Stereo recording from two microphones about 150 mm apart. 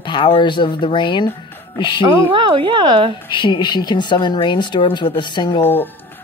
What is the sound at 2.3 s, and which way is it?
Speech, 35° right (ahead or behind).